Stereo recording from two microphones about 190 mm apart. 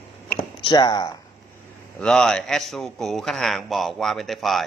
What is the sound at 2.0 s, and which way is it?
A man's voice, 5° left (ahead or behind).